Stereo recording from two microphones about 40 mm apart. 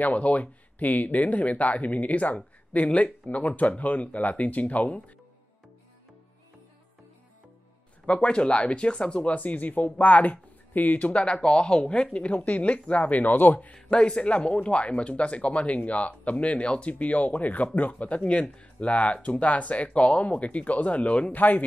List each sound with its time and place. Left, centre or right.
0.0 s speech: left
8.1 s speech: left
11.2 s speech: left
13.8 s speech: left
21.4 s speech: left